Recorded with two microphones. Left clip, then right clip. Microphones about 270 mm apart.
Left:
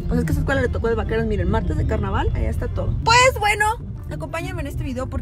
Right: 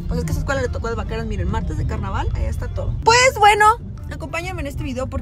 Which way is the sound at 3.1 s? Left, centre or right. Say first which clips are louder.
Right 3 dB; right.